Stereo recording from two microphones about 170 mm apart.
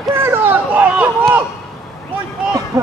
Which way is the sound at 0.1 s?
15° right (ahead or behind).